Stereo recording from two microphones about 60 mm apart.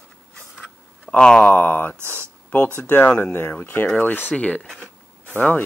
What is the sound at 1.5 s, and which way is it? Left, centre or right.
Speech, left.